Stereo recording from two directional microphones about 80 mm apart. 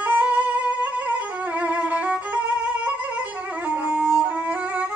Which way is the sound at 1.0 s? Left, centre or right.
Centre.